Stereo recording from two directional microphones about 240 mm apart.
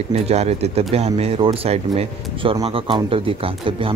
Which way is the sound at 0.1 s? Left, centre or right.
Right.